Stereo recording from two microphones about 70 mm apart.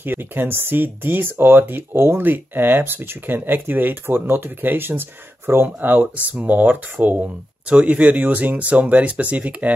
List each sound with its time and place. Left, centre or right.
0.0 s speech: right